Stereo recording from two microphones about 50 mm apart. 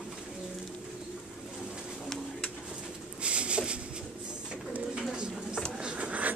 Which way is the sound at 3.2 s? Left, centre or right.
Right.